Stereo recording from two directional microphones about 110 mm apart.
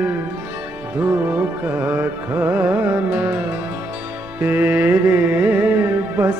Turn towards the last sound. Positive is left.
turn(degrees=-20)  # may be behind; listen again after turning